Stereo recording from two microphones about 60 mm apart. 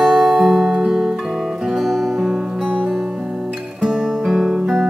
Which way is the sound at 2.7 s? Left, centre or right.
Right.